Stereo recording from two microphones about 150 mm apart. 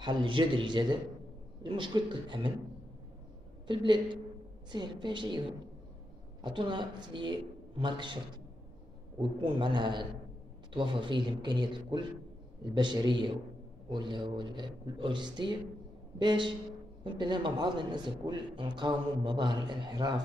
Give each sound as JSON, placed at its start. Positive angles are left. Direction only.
{"t": 0.0, "sound": "a woman's voice", "side_deg": -30}
{"t": 3.6, "sound": "a woman's voice", "side_deg": -30}
{"t": 6.4, "sound": "a woman's voice", "side_deg": -30}
{"t": 9.2, "sound": "a woman's voice", "side_deg": -30}